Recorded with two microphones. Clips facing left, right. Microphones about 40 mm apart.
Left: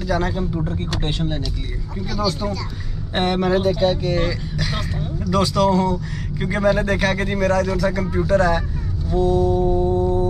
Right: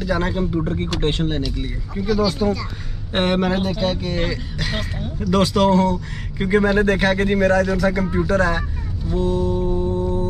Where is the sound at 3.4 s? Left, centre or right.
Right.